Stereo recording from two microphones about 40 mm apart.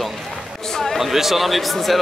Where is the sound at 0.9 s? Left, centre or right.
Centre.